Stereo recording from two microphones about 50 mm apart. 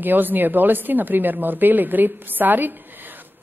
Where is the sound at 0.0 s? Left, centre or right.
Right.